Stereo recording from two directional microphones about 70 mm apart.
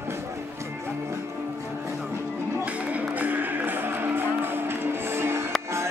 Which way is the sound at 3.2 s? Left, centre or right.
Right.